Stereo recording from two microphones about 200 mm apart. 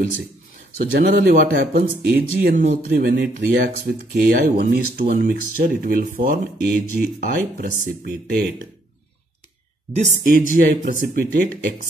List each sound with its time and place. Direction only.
0.9 s speech: 50° right (ahead or behind)
2.9 s speech: 50° right (ahead or behind)
9.9 s speech: 40° right (ahead or behind)